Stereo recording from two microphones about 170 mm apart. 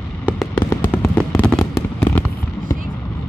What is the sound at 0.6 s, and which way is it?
Fireworks, 10° left (ahead or behind).